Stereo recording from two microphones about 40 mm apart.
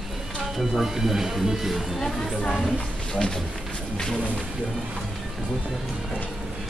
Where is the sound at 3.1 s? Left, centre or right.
Left.